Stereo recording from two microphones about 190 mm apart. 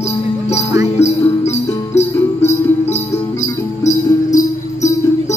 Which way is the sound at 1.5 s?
35° left (ahead or behind).